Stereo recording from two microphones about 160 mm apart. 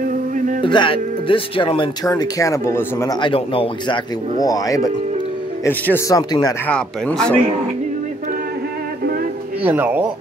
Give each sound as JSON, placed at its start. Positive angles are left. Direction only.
{"t": 0.0, "sound": "music", "side_deg": -60}
{"t": 0.6, "sound": "speech", "side_deg": 30}
{"t": 3.2, "sound": "speech", "side_deg": 35}
{"t": 4.4, "sound": "speech", "side_deg": 20}
{"t": 6.7, "sound": "speech", "side_deg": 5}
{"t": 9.6, "sound": "speech", "side_deg": -10}